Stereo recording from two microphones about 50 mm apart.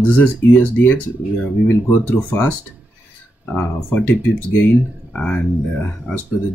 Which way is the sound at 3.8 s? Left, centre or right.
Left.